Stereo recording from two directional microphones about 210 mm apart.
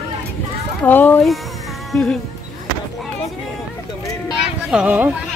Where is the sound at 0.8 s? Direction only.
10° left (ahead or behind).